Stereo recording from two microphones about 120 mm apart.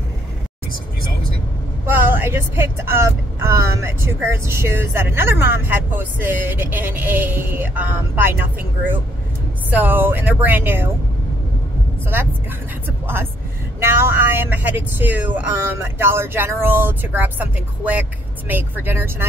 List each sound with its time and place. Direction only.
1.9 s speech: 15° right (ahead or behind)
12.8 s speech: 20° right (ahead or behind)